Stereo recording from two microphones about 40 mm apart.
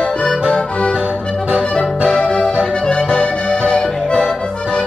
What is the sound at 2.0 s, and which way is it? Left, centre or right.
Music, left.